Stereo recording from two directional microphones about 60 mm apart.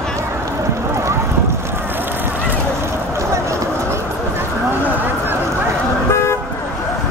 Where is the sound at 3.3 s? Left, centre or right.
Right.